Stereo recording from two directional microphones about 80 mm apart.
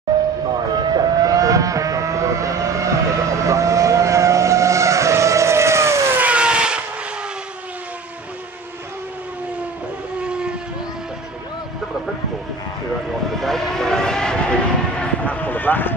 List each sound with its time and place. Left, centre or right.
0.1 s train: right
0.7 s vehicle: right
6.1 s vehicle: centre
10.2 s vehicle: centre
13.4 s vehicle: centre; by 15.9 s left